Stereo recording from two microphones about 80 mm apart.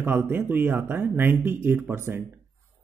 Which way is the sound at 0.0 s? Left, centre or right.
Right.